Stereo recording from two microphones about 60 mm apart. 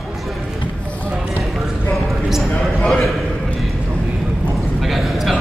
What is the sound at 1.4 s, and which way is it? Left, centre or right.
Clip-clop, centre.